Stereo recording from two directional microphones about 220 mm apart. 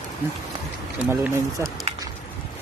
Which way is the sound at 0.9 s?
5° right (ahead or behind).